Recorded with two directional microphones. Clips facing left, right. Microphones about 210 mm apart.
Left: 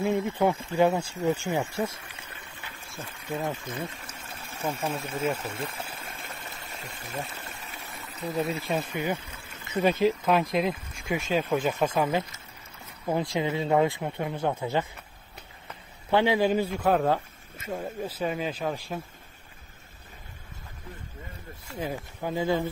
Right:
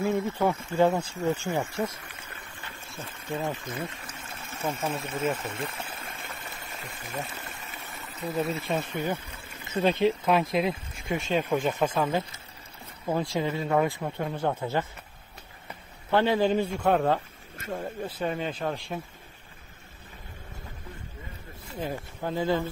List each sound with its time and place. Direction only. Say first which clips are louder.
0.0 s speech: left 1 dB; 15° left (ahead or behind)
3.1 s speech: even; centre (ahead or behind)
6.1 s a sound: even; centre (ahead or behind)
7.1 s speech: even; centre (ahead or behind)
13.1 s speech: left 1 dB; 15° left (ahead or behind)
16.1 s speech: even; 15° left (ahead or behind)
21.7 s speech: even; 10° left (ahead or behind)